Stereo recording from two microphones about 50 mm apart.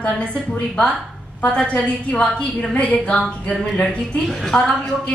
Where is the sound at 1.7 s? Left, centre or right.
Left.